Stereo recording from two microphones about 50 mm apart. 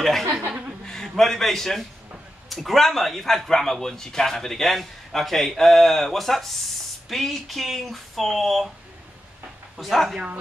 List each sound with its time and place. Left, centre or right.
0.5 s chuckle: right
0.8 s a man's voice: centre
9.8 s speech: centre